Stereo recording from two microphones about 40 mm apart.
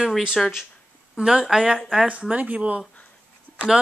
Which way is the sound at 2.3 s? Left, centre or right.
Right.